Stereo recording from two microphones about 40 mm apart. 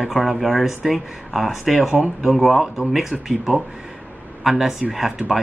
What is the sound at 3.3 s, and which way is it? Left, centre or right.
A man's voice, centre.